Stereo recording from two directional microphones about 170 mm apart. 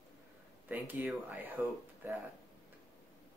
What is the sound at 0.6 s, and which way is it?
Speech, 10° right (ahead or behind).